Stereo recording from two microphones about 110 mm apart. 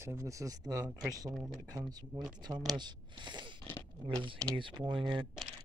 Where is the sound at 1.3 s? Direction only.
Centre (ahead or behind).